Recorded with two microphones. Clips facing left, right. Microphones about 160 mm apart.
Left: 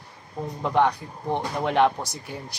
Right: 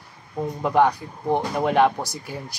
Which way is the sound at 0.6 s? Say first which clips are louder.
Right 2 dB; 5° right (ahead or behind).